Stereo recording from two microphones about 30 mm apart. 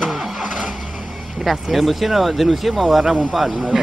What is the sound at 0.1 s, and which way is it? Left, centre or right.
Vehicle, centre.